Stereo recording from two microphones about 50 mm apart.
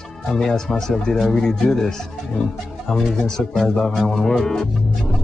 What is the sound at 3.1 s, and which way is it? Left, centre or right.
Speech, centre.